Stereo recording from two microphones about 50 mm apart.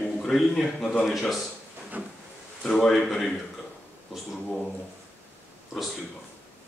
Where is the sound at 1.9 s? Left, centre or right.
Right.